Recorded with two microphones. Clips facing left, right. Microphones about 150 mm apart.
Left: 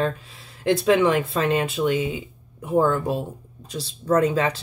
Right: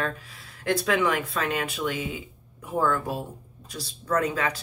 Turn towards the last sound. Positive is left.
turn(degrees=25)  # may be behind; listen again after turning